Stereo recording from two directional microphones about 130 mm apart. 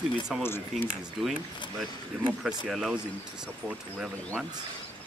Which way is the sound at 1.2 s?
5° right (ahead or behind).